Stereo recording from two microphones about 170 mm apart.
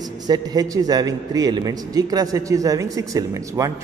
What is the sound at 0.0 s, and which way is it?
A man's voice, 25° right (ahead or behind).